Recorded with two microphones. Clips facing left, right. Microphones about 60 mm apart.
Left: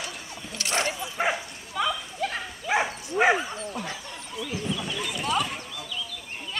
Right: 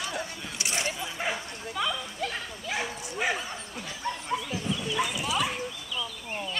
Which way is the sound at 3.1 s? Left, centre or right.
Left.